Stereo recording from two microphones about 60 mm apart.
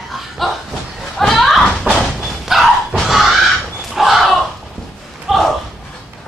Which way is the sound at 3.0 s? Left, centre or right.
Centre.